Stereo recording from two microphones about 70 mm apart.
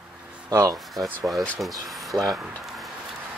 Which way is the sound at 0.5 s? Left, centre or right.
Right.